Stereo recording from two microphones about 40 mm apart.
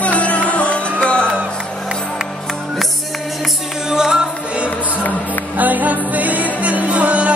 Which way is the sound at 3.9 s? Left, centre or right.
Centre.